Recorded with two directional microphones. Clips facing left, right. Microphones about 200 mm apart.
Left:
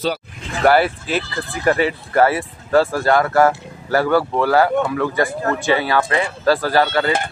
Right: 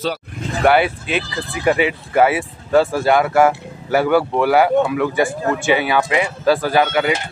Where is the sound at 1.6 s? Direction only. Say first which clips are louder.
Right 1 dB; 10° right (ahead or behind).